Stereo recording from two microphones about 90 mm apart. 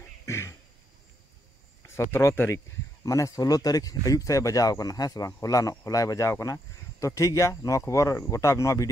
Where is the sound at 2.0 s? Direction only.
30° left (ahead or behind).